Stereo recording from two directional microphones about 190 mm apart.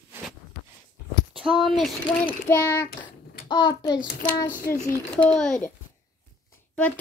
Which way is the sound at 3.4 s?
20° left (ahead or behind).